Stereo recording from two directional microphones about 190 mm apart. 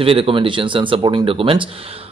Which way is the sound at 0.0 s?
30° right (ahead or behind).